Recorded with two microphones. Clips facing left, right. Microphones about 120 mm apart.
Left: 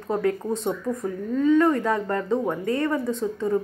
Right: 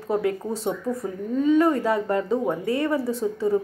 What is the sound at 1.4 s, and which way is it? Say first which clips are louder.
Speech: even; 20° right (ahead or behind).